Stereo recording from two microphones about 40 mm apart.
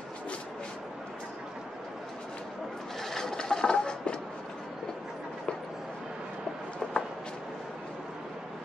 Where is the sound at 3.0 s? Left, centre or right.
Centre.